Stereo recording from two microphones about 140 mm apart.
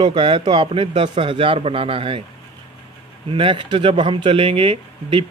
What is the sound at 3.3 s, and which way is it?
Speech, 35° right (ahead or behind).